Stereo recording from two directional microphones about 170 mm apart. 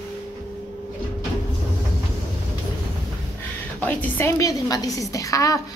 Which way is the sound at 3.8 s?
10° left (ahead or behind).